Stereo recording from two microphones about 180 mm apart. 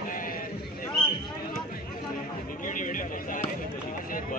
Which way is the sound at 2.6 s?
45° left (ahead or behind).